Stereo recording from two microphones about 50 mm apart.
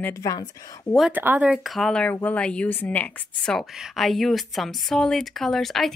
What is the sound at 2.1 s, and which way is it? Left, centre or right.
Speech, left.